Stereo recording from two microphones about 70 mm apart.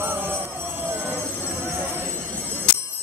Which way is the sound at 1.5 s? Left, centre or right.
Right.